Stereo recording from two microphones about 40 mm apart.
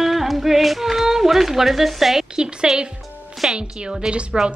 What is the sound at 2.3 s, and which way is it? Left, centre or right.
Speech, centre.